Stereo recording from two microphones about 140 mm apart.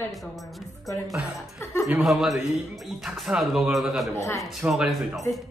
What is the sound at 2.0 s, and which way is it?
Speech, centre (ahead or behind).